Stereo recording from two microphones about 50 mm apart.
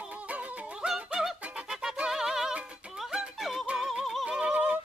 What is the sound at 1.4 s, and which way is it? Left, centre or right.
Music, right.